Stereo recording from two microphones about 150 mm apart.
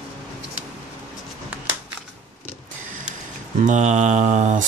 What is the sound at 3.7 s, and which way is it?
Speech, 50° right (ahead or behind).